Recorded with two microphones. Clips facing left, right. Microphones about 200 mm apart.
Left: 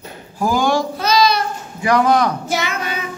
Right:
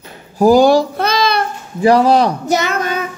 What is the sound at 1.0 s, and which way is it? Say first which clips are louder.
Child singing: even; 55° right (ahead or behind).